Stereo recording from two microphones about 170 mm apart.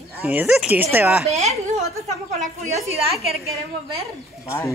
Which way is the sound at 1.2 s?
40° right (ahead or behind).